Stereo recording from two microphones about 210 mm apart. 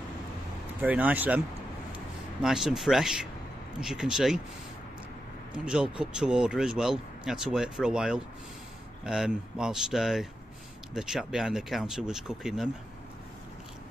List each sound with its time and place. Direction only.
0.7 s speech: 10° right (ahead or behind)
2.4 s speech: centre (ahead or behind)
5.5 s speech: 5° right (ahead or behind)